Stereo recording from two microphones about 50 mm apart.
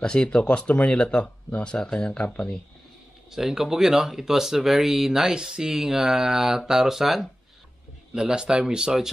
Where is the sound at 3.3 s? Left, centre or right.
Centre.